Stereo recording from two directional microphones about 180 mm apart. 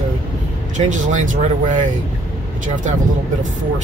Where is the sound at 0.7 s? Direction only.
45° right (ahead or behind).